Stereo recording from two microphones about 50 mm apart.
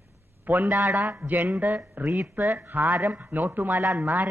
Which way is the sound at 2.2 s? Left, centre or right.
Right.